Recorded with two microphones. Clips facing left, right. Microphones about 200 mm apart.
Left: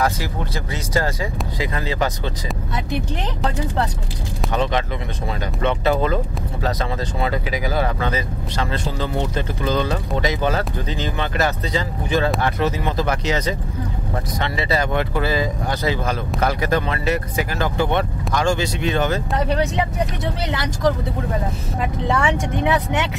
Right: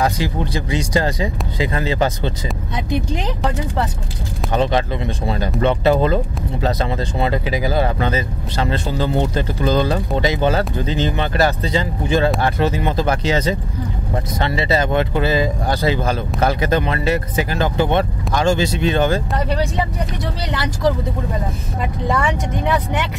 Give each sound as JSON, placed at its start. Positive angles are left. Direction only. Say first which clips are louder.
{"t": 0.0, "sound": "speech", "louder": "right 3 dB", "side_deg": -20}
{"t": 5.4, "sound": "speech", "louder": "right 4 dB", "side_deg": -35}
{"t": 19.3, "sound": "speech", "louder": "even", "side_deg": 0}
{"t": 22.1, "sound": "speech", "louder": "even", "side_deg": 0}